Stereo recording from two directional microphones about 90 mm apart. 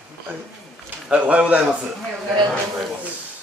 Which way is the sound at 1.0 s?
10° right (ahead or behind).